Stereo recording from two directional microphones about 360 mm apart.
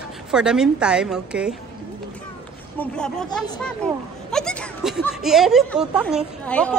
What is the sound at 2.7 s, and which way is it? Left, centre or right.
Speech, centre.